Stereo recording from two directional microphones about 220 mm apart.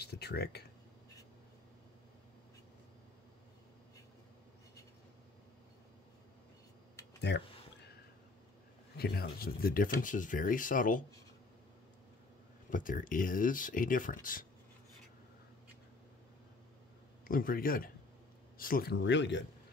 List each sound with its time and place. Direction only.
0.0 s speech: 50° left (ahead or behind)
7.2 s speech: 50° left (ahead or behind)
8.9 s speech: 45° left (ahead or behind)
12.6 s speech: 35° left (ahead or behind)
17.3 s speech: 40° left (ahead or behind)